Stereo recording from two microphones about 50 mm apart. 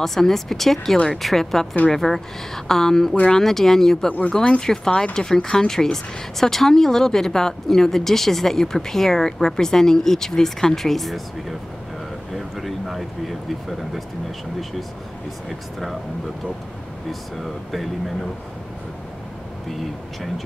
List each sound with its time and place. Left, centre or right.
0.0 s a woman's voice: centre
12.4 s speech: centre